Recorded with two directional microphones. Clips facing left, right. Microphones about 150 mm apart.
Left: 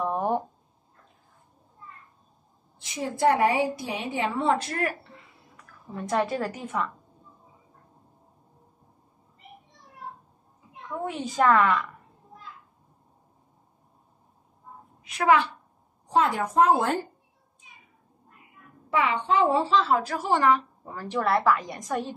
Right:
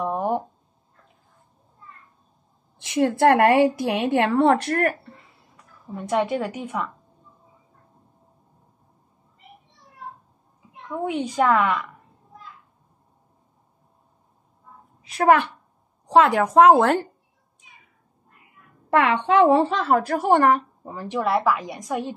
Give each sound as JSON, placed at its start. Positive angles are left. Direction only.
{"t": 0.0, "sound": "a sound", "side_deg": -5}
{"t": 2.8, "sound": "a woman's voice", "side_deg": -70}
{"t": 5.9, "sound": "a woman's voice", "side_deg": -15}
{"t": 11.3, "sound": "a woman's voice", "side_deg": -15}
{"t": 15.2, "sound": "a woman's voice", "side_deg": -60}
{"t": 16.1, "sound": "a woman's voice", "side_deg": -85}
{"t": 18.9, "sound": "a woman's voice", "side_deg": -70}
{"t": 20.8, "sound": "a woman's voice", "side_deg": -20}